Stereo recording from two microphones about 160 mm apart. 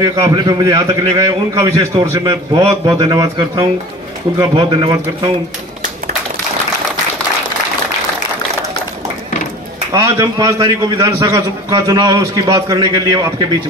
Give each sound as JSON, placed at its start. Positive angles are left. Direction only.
{"t": 0.0, "sound": "a man's voice", "side_deg": -20}
{"t": 9.9, "sound": "a man's voice", "side_deg": -20}